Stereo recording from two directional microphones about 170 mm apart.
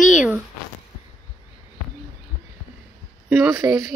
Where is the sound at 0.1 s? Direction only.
5° right (ahead or behind).